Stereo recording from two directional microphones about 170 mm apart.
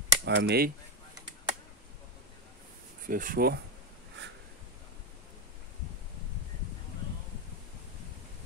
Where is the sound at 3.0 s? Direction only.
55° right (ahead or behind).